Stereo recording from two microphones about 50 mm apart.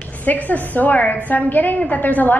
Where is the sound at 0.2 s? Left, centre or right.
Left.